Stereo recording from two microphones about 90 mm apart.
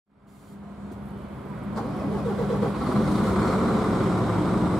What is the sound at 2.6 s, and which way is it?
Vehicle, centre (ahead or behind).